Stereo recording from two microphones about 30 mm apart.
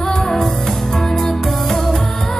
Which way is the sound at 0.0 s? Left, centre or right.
Centre.